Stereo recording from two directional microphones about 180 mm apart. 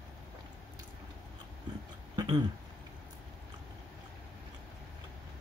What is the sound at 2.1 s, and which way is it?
Throat clearing, 25° right (ahead or behind).